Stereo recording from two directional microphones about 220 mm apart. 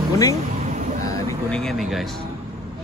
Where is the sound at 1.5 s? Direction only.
Centre (ahead or behind).